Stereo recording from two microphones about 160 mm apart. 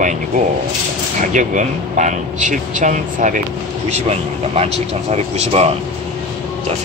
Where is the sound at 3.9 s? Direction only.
40° right (ahead or behind).